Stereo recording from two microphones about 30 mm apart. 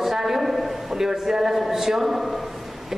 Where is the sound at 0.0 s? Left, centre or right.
Centre.